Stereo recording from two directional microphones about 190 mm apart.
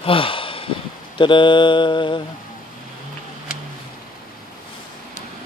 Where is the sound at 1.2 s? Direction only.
25° left (ahead or behind).